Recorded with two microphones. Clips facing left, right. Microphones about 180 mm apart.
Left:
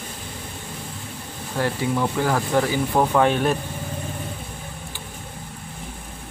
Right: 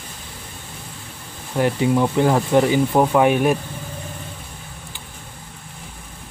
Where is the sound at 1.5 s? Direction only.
20° right (ahead or behind).